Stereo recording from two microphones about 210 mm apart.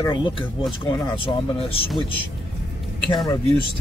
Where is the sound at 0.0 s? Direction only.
20° left (ahead or behind).